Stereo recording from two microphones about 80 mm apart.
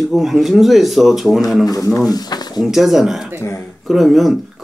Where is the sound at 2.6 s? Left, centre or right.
Centre.